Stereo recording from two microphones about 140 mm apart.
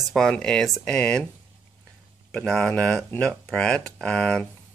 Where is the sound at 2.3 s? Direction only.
5° left (ahead or behind).